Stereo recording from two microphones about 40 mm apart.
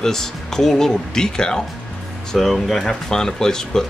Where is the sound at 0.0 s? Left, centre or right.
Centre.